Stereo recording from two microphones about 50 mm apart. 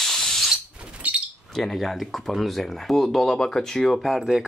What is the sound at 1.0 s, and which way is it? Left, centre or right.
Bird, right.